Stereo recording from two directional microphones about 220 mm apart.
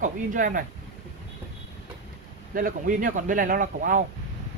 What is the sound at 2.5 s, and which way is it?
Speech, 40° right (ahead or behind).